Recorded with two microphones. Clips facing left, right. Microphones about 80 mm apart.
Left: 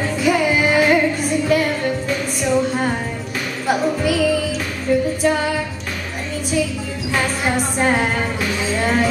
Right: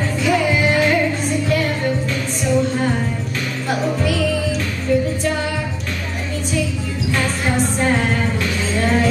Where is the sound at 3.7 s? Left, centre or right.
Centre.